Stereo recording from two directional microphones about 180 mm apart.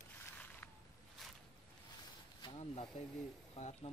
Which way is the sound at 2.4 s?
30° left (ahead or behind).